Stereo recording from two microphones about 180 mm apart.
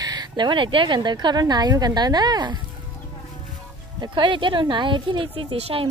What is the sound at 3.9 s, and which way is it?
Speech, 25° right (ahead or behind).